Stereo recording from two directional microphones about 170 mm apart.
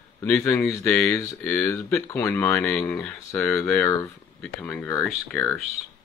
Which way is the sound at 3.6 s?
15° left (ahead or behind).